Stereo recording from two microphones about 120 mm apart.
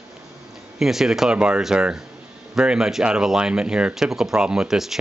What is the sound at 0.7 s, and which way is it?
Speech, 5° right (ahead or behind).